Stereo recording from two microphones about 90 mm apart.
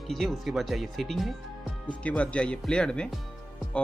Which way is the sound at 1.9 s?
15° left (ahead or behind).